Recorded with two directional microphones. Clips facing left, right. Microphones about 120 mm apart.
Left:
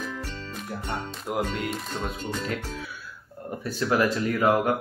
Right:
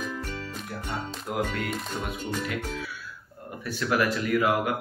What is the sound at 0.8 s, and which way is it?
Speech, 25° left (ahead or behind).